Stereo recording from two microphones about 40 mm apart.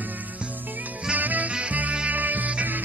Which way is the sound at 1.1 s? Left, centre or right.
Right.